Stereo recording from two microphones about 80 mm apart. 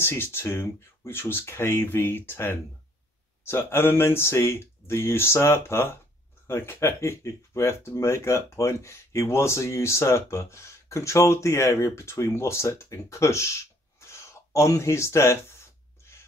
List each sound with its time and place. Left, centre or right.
0.0 s speech: left